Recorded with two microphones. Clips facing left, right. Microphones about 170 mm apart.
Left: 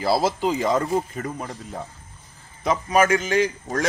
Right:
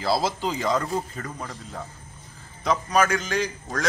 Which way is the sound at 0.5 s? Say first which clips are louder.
Left 4 dB; 20° left (ahead or behind).